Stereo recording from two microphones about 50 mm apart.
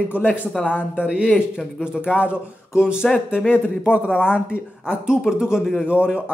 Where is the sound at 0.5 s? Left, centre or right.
Centre.